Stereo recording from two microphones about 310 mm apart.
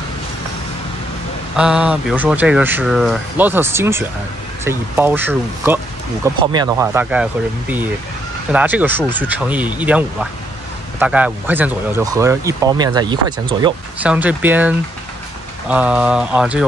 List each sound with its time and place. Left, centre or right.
1.6 s speech: centre